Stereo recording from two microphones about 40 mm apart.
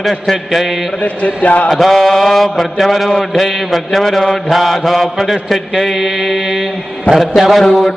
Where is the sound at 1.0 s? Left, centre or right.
Left.